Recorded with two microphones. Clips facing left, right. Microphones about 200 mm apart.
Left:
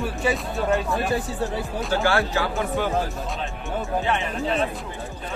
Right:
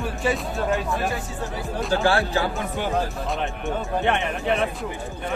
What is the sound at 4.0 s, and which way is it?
Speech, 65° right (ahead or behind).